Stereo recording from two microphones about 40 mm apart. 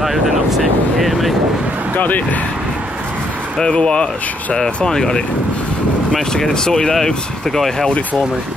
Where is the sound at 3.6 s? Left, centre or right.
Left.